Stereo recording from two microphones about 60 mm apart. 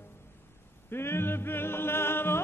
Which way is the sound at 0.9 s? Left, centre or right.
Left.